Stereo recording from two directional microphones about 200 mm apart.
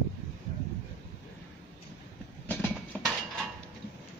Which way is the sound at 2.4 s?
10° left (ahead or behind).